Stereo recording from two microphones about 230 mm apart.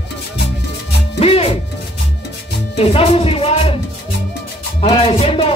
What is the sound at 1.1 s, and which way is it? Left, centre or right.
Music, left.